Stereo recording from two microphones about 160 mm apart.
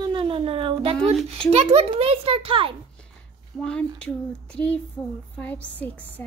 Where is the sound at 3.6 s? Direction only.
5° left (ahead or behind).